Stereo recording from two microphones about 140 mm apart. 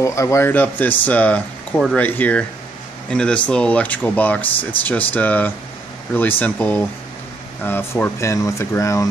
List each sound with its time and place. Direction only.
0.0 s speech: 20° left (ahead or behind)